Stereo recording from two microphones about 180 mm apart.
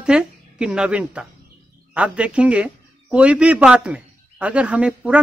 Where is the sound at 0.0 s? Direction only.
5° right (ahead or behind).